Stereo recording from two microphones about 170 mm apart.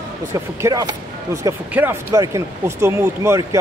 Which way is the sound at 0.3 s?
20° right (ahead or behind).